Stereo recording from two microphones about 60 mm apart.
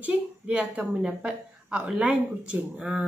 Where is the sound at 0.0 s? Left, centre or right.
Right.